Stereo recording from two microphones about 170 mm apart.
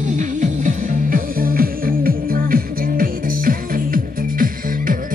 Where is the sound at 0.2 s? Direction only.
50° right (ahead or behind).